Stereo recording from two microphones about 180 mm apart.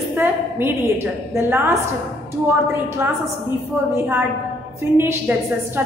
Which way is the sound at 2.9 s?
15° right (ahead or behind).